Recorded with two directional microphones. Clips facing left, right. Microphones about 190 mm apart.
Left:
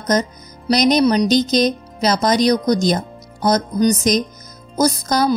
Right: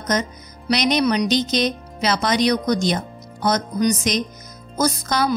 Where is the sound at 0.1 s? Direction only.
40° left (ahead or behind).